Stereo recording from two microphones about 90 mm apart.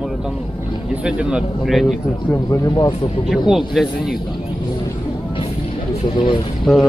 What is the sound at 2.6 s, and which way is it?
Speech, 55° left (ahead or behind).